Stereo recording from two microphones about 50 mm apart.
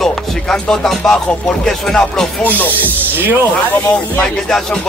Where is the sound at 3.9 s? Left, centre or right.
Left.